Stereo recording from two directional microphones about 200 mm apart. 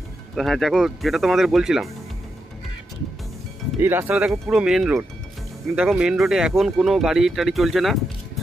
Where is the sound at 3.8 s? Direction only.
10° right (ahead or behind).